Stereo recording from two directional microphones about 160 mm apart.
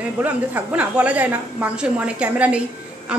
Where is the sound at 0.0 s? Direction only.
10° right (ahead or behind).